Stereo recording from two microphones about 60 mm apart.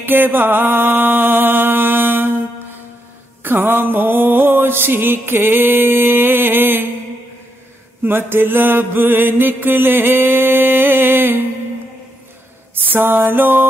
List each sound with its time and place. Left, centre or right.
0.0 s music: right
3.4 s mantra: right
8.0 s mantra: right
12.8 s mantra: right